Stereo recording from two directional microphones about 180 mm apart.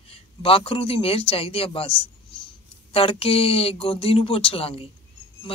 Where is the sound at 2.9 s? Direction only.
30° left (ahead or behind).